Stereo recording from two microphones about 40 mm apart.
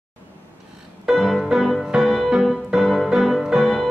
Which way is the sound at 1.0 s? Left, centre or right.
Centre.